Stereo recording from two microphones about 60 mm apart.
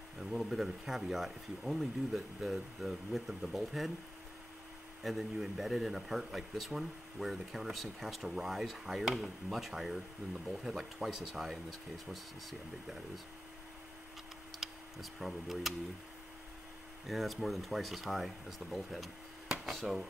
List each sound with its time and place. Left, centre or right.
0.2 s speech: centre
5.0 s speech: centre
14.6 s speech: centre
17.1 s speech: centre